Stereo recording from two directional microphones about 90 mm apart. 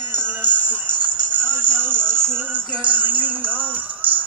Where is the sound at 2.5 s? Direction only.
20° right (ahead or behind).